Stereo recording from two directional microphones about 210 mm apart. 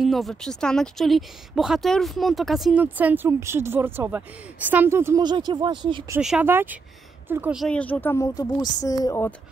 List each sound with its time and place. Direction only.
0.0 s a woman's voice: centre (ahead or behind); by 6.1 s 20° right (ahead or behind)
6.1 s speech: 5° right (ahead or behind)
7.6 s speech: 5° left (ahead or behind)